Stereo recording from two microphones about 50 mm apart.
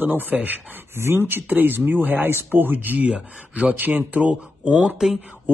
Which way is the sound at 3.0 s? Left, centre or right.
Right.